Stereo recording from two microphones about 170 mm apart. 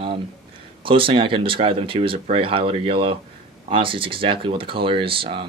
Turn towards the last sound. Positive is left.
turn(degrees=-30)  # may be behind; listen again after turning